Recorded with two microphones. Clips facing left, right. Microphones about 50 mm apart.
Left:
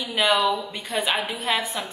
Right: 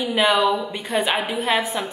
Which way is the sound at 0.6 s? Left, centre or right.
Right.